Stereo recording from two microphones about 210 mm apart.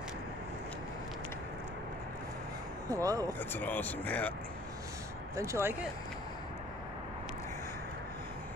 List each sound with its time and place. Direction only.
2.9 s speech: 15° right (ahead or behind)
3.3 s speech: 10° left (ahead or behind)
5.3 s speech: 15° right (ahead or behind)